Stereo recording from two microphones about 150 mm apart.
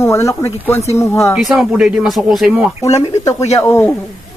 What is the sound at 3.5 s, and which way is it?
Speech, 20° left (ahead or behind).